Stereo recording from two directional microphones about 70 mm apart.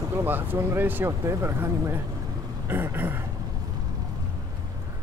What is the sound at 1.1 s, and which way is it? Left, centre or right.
Speech, right.